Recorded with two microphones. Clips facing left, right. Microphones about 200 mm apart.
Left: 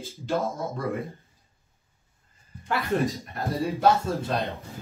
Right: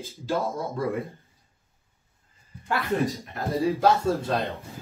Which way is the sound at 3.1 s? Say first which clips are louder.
Right 2 dB; centre (ahead or behind).